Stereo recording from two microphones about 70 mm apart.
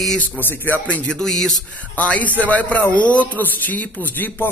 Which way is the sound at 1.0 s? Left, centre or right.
Centre.